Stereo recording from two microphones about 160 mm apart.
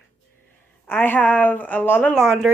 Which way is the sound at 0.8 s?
10° left (ahead or behind).